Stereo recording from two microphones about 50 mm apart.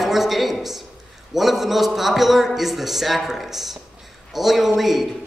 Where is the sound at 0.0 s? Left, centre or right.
Centre.